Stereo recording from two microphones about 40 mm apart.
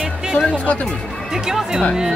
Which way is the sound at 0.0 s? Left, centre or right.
Centre.